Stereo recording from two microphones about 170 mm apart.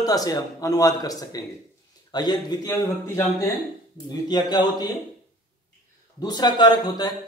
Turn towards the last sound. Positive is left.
turn(degrees=25)  # may be behind; listen again after turning